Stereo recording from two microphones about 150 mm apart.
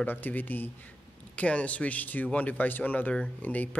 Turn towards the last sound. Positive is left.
turn(degrees=10)  # may be behind; listen again after turning